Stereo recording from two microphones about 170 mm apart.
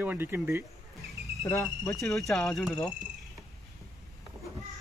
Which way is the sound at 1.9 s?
Centre (ahead or behind).